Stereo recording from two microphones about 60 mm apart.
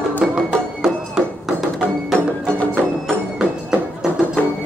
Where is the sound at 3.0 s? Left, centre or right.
Centre.